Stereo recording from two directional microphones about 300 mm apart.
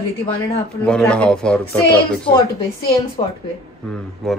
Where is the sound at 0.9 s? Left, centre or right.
Centre.